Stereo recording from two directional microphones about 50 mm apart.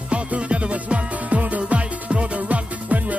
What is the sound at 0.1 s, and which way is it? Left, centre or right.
Music, right.